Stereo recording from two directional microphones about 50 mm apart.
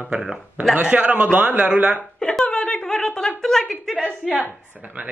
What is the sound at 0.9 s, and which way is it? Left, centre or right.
A man's voice, right.